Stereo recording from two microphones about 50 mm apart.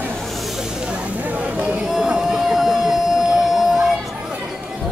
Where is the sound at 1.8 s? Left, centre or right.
Centre.